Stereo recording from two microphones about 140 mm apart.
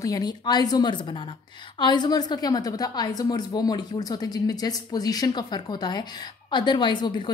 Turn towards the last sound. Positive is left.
turn(degrees=30)  # may be behind; listen again after turning